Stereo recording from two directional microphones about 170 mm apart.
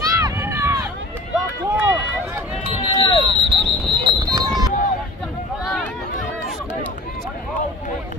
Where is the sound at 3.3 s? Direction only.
30° right (ahead or behind).